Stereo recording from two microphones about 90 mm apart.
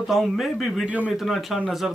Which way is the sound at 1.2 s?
Centre (ahead or behind).